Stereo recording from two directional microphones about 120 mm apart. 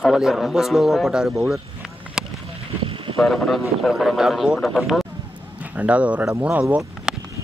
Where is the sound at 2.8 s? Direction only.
45° right (ahead or behind).